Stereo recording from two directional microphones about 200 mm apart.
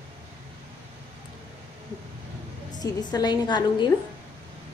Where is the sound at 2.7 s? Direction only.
20° left (ahead or behind).